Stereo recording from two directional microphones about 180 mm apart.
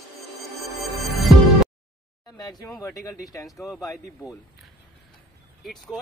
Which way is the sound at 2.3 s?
20° left (ahead or behind).